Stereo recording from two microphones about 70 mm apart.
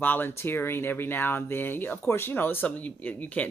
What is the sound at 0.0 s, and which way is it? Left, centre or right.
Speech, left.